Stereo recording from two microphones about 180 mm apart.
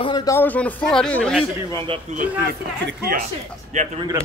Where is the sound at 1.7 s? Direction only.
30° right (ahead or behind).